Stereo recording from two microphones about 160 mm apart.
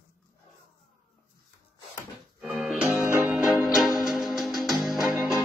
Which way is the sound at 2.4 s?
Centre (ahead or behind).